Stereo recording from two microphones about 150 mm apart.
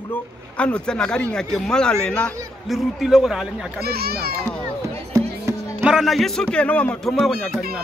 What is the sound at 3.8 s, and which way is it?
Speech, 90° right.